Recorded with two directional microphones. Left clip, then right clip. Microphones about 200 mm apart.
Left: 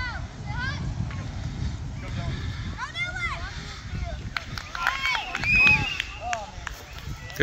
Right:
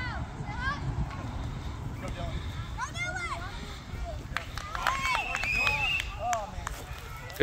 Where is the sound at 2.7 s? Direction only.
75° right (ahead or behind).